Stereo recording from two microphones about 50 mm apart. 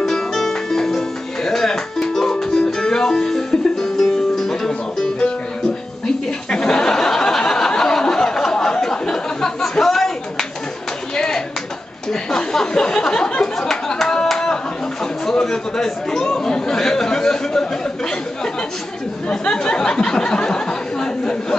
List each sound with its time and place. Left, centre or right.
0.0 s music: centre
6.5 s a sound: centre
11.1 s clapping: centre
12.1 s a sound: centre
15.2 s speech: centre
19.2 s speech: left